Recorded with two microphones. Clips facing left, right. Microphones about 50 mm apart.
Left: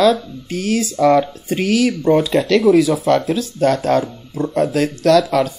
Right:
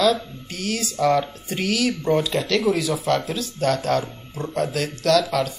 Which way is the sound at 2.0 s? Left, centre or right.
Left.